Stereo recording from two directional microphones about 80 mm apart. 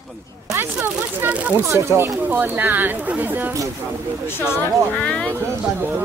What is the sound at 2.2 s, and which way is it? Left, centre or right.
Speech, right.